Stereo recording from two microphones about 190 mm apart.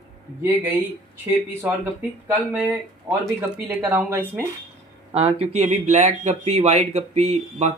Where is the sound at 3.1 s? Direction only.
10° right (ahead or behind).